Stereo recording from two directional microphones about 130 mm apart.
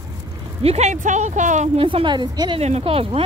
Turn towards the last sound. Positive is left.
turn(degrees=-50)  # may be behind; listen again after turning